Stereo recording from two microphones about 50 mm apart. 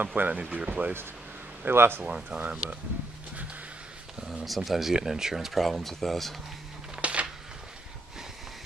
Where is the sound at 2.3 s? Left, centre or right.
Right.